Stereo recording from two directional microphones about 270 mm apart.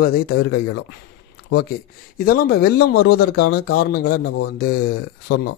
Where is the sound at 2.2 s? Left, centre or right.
Left.